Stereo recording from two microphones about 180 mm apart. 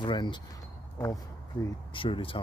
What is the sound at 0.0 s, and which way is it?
Speech, 25° left (ahead or behind).